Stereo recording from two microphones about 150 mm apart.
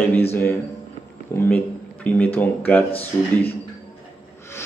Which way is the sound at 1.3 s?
15° left (ahead or behind).